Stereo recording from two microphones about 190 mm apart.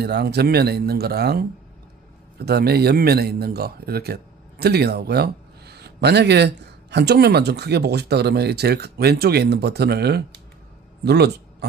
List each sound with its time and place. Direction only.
0.0 s speech: 60° right (ahead or behind)